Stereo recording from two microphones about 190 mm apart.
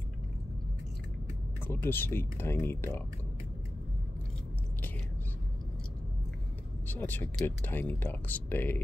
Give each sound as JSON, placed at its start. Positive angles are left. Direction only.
{"t": 1.7, "sound": "speech", "side_deg": 10}
{"t": 6.9, "sound": "speech", "side_deg": 10}